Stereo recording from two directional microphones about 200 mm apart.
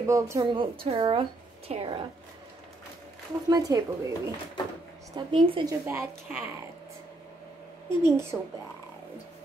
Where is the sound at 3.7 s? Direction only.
20° right (ahead or behind).